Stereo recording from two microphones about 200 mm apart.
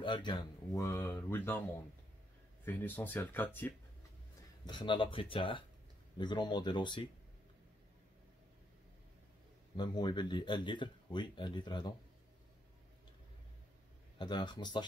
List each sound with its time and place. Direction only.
0.0 s speech: 25° left (ahead or behind)
4.6 s speech: 25° left (ahead or behind)
9.8 s speech: 20° left (ahead or behind)
14.1 s speech: 20° left (ahead or behind)